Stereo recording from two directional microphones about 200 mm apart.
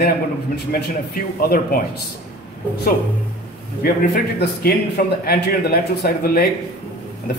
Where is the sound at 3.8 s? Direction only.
50° left (ahead or behind).